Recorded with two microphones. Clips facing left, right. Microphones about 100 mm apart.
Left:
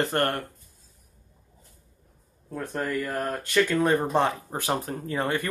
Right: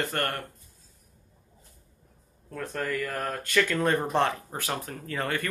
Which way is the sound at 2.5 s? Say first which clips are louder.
Left 2 dB; 15° left (ahead or behind).